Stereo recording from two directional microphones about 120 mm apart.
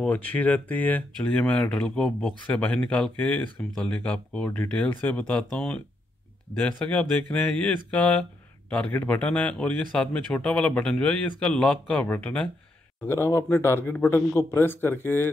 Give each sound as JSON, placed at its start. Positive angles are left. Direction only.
{"t": 0.0, "sound": "speech", "side_deg": 15}
{"t": 6.8, "sound": "speech", "side_deg": 10}
{"t": 13.0, "sound": "speech", "side_deg": 20}